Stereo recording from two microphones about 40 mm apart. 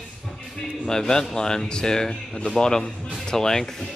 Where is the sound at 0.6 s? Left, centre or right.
Centre.